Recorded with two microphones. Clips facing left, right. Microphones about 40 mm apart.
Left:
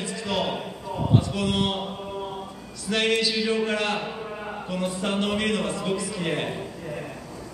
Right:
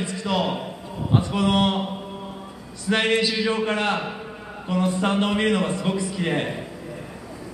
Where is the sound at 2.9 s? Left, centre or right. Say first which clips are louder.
Right 2 dB; right.